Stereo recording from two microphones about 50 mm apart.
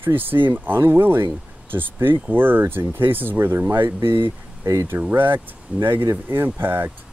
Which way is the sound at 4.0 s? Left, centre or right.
Right.